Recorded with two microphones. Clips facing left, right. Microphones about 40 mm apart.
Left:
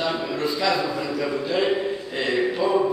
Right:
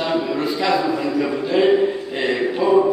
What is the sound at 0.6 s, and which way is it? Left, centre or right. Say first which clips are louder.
A man's voice: right 5 dB; right.